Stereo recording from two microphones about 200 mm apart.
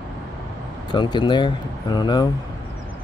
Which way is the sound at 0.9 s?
20° left (ahead or behind).